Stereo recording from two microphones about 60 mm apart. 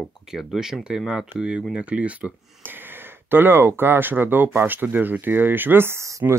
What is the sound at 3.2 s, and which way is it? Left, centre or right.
Speech, right.